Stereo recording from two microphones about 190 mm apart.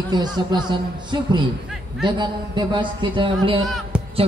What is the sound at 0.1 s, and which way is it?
A man's voice, 20° right (ahead or behind).